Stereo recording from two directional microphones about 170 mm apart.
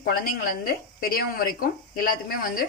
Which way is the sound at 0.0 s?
55° left (ahead or behind).